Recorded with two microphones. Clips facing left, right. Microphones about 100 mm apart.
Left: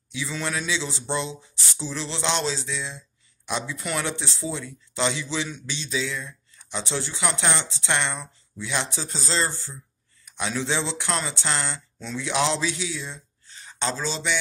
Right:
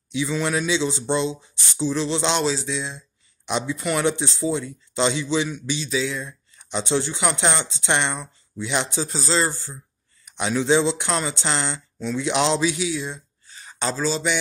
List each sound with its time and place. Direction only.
0.1 s speech: 20° right (ahead or behind)
9.1 s speech: 5° right (ahead or behind)
10.2 s speech: 15° right (ahead or behind)
13.7 s a sound: 10° right (ahead or behind)
14.0 s speech: 10° right (ahead or behind)